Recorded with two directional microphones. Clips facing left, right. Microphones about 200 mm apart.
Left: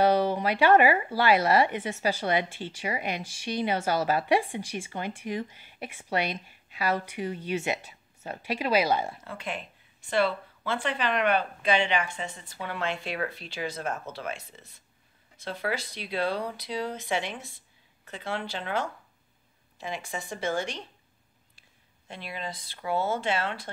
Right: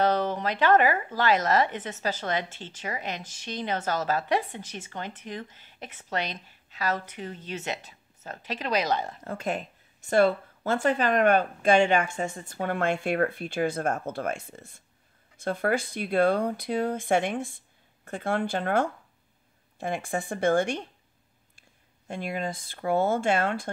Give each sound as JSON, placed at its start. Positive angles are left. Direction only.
{"t": 0.0, "sound": "speech", "side_deg": 10}
{"t": 9.2, "sound": "speech", "side_deg": -45}